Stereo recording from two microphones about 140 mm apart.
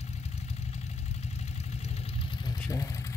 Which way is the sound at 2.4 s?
25° left (ahead or behind).